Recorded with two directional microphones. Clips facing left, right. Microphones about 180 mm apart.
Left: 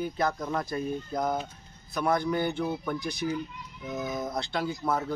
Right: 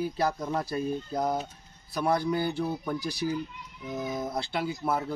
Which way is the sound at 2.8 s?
35° right (ahead or behind).